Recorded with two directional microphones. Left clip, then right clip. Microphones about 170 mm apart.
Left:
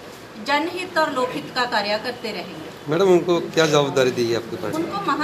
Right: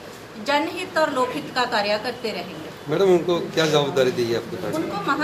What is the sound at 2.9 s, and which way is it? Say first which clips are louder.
A man's voice: left 2 dB; 60° left (ahead or behind).